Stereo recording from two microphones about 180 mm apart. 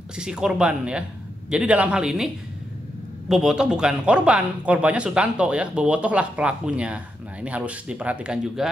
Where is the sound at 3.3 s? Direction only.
5° right (ahead or behind).